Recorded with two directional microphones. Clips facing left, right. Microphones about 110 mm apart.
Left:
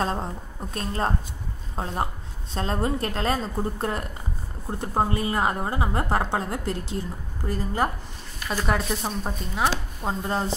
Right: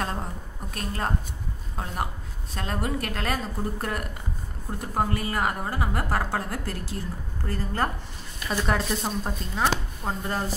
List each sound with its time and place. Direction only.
0.0 s a woman's voice: 30° left (ahead or behind)
8.5 s speech: centre (ahead or behind)
10.0 s a woman's voice: 20° left (ahead or behind)